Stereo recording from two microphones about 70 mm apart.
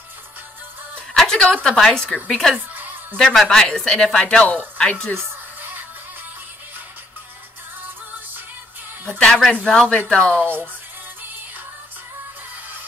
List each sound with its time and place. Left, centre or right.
0.9 s speech: centre
2.7 s a sound: right
3.2 s speech: centre
5.1 s music: right
9.2 s speech: centre
10.4 s speech: right